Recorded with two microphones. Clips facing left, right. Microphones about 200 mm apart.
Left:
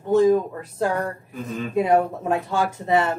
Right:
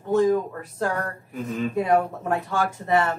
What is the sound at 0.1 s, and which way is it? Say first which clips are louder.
Speech: left 3 dB; 15° left (ahead or behind).